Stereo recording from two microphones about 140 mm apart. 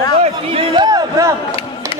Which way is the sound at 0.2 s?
40° right (ahead or behind).